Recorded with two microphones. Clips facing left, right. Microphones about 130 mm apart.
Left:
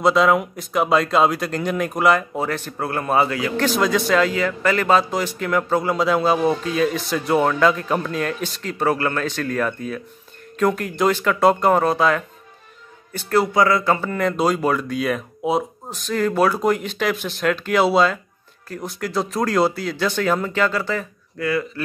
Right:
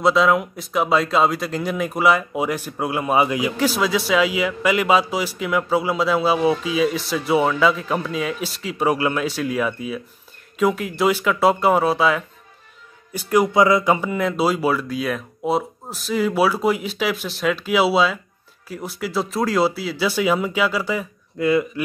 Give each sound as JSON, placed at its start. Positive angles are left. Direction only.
{"t": 0.0, "sound": "speech", "side_deg": 0}
{"t": 13.1, "sound": "speech", "side_deg": -15}
{"t": 21.4, "sound": "speech", "side_deg": -20}